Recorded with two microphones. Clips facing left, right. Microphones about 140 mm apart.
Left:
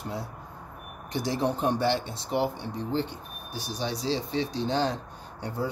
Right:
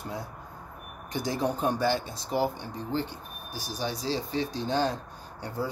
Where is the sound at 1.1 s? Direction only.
25° left (ahead or behind).